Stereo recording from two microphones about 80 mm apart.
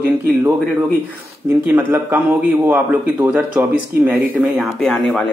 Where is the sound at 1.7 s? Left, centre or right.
Right.